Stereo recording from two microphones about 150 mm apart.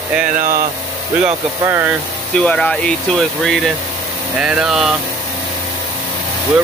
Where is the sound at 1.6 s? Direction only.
15° right (ahead or behind).